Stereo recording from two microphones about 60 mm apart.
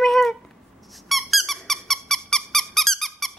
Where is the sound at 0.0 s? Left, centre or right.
Centre.